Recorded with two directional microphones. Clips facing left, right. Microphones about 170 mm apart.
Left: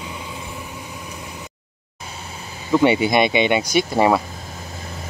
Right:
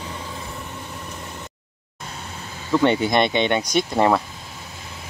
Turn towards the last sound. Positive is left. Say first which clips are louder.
# left 2 dB
turn(degrees=5)  # may be behind; listen again after turning